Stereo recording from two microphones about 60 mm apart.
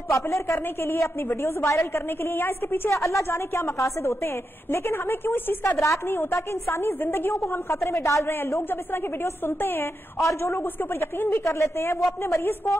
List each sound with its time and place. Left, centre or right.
0.1 s a woman's voice: left
2.9 s a woman's voice: left
4.0 s a woman's voice: left
8.3 s a woman's voice: left
11.4 s a woman's voice: left